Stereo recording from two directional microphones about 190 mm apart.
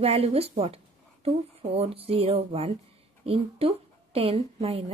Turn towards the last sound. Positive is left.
turn(degrees=-30)  # may be behind; listen again after turning